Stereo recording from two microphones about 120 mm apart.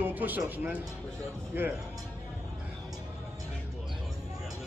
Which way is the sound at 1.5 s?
15° right (ahead or behind).